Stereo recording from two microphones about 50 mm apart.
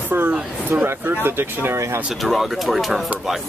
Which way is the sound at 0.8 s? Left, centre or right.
Right.